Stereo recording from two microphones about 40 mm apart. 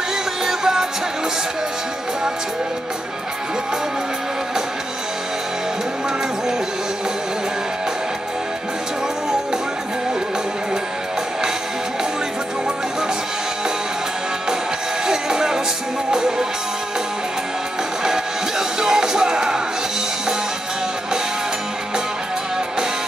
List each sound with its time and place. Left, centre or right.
0.5 s music: centre
15.0 s music: centre
18.0 s music: centre